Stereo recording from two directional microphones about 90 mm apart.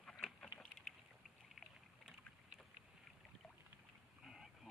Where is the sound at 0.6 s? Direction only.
10° left (ahead or behind).